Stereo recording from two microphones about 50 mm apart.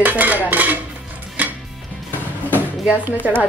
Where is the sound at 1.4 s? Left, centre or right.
Right.